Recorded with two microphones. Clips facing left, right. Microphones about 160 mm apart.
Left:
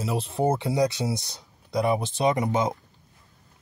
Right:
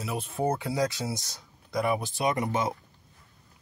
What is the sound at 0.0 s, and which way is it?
Speech, 30° left (ahead or behind).